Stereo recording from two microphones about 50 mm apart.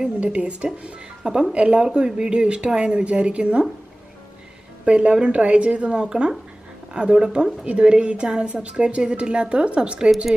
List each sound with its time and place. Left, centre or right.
0.2 s speech: right
4.8 s speech: right